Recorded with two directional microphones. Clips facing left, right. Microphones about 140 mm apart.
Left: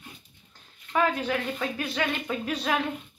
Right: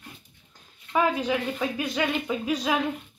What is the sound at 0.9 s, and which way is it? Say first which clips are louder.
Speech: right 2 dB; 10° right (ahead or behind).